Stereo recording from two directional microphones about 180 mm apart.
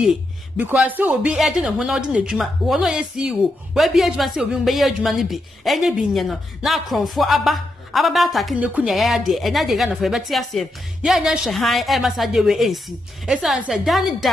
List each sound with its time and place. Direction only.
0.0 s speech: 5° right (ahead or behind)